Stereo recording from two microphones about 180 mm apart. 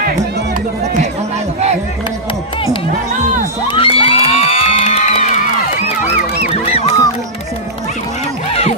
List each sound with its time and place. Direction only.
3.6 s crowd: 30° left (ahead or behind)
4.0 s music: 35° left (ahead or behind)